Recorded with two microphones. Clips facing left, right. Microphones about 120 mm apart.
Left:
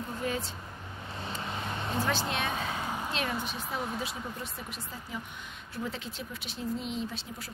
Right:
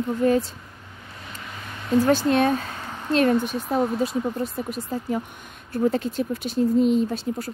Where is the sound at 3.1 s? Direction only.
50° right (ahead or behind).